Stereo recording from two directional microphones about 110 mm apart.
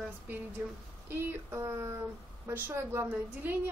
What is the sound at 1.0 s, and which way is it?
A woman's voice, 20° right (ahead or behind).